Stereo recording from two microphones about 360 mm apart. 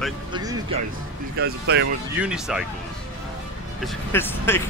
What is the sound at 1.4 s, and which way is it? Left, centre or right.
Speech, right.